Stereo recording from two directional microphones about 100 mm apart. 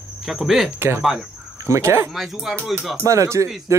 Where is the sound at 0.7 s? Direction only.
20° right (ahead or behind).